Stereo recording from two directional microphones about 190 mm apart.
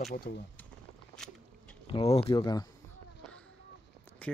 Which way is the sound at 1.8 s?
30° left (ahead or behind).